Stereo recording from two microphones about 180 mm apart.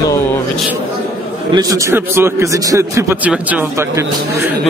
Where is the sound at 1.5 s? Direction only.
20° right (ahead or behind).